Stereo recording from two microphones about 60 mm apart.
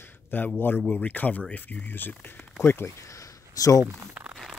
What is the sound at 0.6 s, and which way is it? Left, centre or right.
Speech, left.